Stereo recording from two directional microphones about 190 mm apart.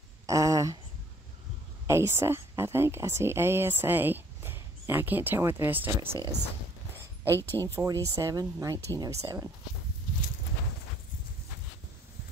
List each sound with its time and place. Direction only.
0.3 s a sound: 15° right (ahead or behind)
1.9 s speech: 15° right (ahead or behind)
7.3 s speech: 10° left (ahead or behind)
7.6 s speech: 15° right (ahead or behind)